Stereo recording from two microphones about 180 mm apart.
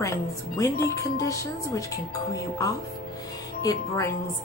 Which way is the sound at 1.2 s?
15° left (ahead or behind).